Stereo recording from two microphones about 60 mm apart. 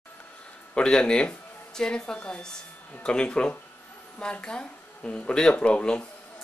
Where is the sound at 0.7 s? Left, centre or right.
Centre.